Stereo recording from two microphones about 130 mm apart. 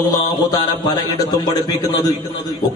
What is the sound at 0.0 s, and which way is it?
A man's voice, 30° left (ahead or behind).